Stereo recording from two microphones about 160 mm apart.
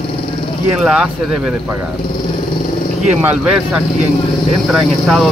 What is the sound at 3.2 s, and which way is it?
Speech, 10° right (ahead or behind).